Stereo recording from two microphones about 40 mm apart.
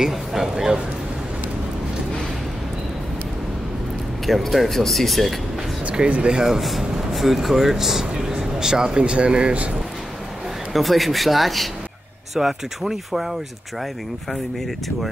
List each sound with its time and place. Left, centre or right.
0.0 s speech: centre
4.3 s speech: centre
5.9 s speech: right
6.4 s speech: centre; by 9.7 s right
10.7 s speech: centre